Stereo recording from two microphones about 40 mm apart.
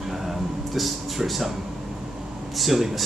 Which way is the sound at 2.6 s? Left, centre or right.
Centre.